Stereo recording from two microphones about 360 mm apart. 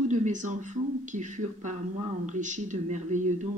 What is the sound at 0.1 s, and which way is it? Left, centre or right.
Speech, centre.